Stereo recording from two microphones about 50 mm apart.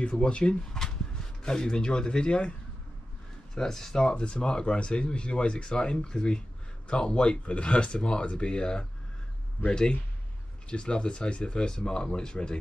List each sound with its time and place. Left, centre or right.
0.0 s speech: left
3.5 s speech: centre